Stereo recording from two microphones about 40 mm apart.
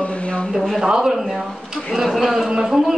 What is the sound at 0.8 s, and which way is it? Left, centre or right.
Speech, centre.